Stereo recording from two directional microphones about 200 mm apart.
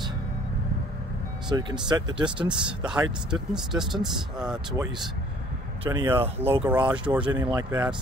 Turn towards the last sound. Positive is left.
turn(degrees=-20)  # may be behind; listen again after turning